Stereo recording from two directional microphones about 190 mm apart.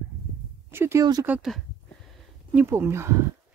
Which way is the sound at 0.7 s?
15° right (ahead or behind).